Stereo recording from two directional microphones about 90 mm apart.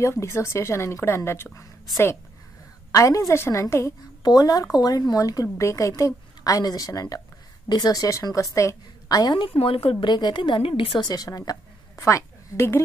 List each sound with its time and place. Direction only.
0.0 s speech: 30° left (ahead or behind)
2.9 s a woman's voice: 40° left (ahead or behind)
4.2 s a woman's voice: 45° left (ahead or behind)
9.3 s a woman's voice: 80° left
10.0 s a woman's voice: 55° left (ahead or behind); by 11.0 s 85° left
11.0 s a woman's voice: 45° left (ahead or behind); by 12.8 s 30° left (ahead or behind)